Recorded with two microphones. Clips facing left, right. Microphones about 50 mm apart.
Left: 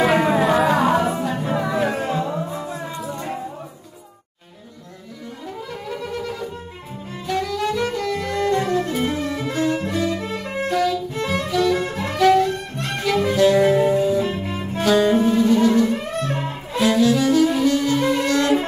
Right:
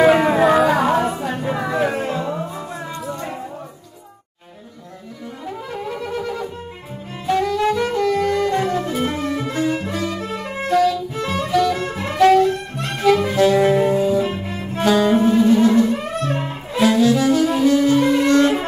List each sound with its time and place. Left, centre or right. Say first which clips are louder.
0.0 s music: right 4 dB; centre
1.3 s music: even; centre
6.0 s music: right 2 dB; centre
15.9 s saxophone: right 2 dB; centre
17.6 s music: right 4 dB; centre
18.2 s music: right 5 dB; right